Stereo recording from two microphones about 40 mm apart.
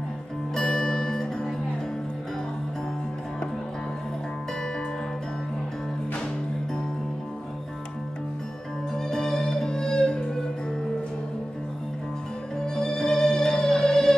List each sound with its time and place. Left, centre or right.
0.7 s music: centre
8.9 s music: centre
12.5 s music: centre